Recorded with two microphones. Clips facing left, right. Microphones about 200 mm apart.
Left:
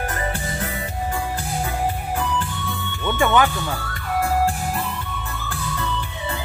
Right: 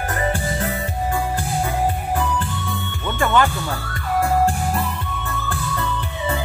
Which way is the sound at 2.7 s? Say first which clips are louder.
Left 1 dB; centre (ahead or behind).